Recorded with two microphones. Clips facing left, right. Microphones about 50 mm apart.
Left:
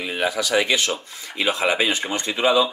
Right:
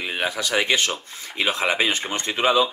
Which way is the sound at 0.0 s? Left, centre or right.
Right.